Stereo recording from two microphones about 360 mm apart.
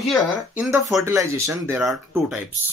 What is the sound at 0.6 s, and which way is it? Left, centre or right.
Speech, centre.